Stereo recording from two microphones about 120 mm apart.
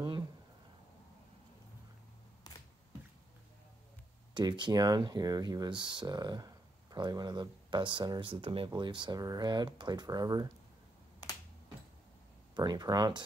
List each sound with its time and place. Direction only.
4.3 s speech: 40° right (ahead or behind)
12.5 s speech: 35° right (ahead or behind)